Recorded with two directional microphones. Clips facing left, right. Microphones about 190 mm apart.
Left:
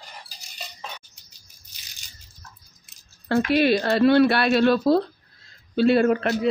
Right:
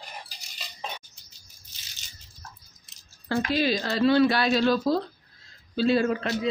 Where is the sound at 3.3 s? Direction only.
65° left (ahead or behind).